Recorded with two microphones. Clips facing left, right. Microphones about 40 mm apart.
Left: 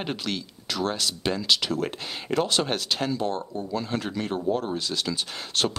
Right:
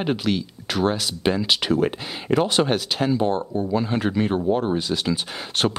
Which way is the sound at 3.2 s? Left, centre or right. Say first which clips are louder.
Right 6 dB; right.